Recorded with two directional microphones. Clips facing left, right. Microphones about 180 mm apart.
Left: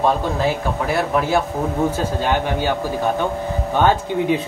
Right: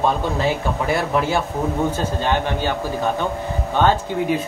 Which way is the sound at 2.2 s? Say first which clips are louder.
Left 1 dB; 10° left (ahead or behind).